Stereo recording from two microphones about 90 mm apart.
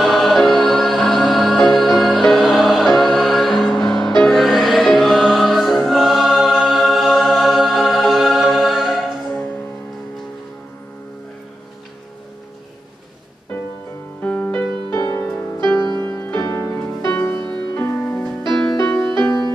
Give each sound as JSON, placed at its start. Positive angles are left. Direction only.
{"t": 0.0, "sound": "music", "side_deg": 0}
{"t": 5.9, "sound": "choir", "side_deg": 0}
{"t": 14.2, "sound": "music", "side_deg": 20}
{"t": 14.9, "sound": "music", "side_deg": 40}
{"t": 15.1, "sound": "music", "side_deg": 20}
{"t": 16.3, "sound": "music", "side_deg": 35}